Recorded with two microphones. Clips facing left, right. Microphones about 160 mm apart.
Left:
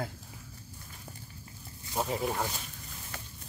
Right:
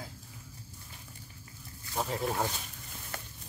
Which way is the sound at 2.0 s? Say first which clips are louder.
Left 1 dB; 5° left (ahead or behind).